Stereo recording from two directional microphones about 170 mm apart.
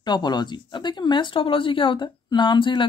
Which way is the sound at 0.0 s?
25° left (ahead or behind).